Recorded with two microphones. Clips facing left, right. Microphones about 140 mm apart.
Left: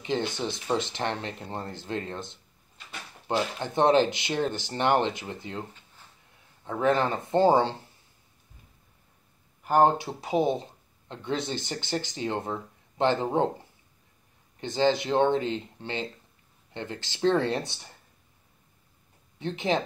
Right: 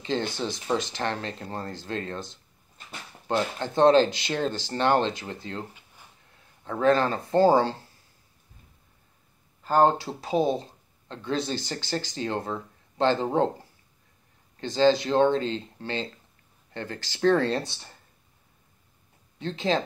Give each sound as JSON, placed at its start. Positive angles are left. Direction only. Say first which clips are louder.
{"t": 0.3, "sound": "speech", "louder": "right 1 dB", "side_deg": 20}
{"t": 9.6, "sound": "speech", "louder": "even", "side_deg": 15}
{"t": 14.6, "sound": "speech", "louder": "right 3 dB", "side_deg": 20}
{"t": 19.3, "sound": "speech", "louder": "right 1 dB", "side_deg": 20}